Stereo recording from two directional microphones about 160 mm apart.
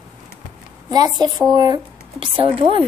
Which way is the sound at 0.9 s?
25° right (ahead or behind).